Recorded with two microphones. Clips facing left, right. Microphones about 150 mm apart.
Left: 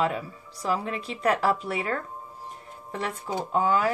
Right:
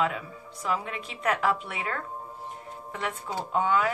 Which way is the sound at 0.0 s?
35° left (ahead or behind).